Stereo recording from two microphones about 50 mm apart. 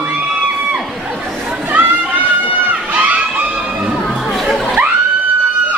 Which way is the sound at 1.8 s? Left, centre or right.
Right.